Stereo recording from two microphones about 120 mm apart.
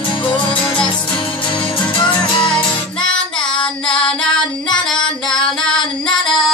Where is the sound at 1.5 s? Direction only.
40° left (ahead or behind).